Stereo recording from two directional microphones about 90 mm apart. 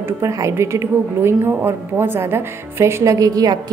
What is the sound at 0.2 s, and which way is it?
A woman's voice, 35° right (ahead or behind).